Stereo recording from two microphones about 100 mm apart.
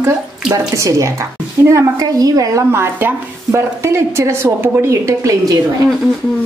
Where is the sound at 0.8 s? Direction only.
30° right (ahead or behind).